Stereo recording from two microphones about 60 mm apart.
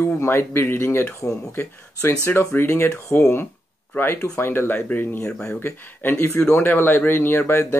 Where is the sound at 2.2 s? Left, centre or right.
Left.